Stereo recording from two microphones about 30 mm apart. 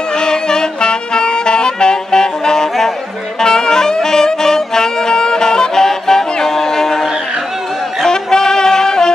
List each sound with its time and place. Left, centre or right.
0.2 s music: left
3.3 s saxophone: left
8.1 s music: centre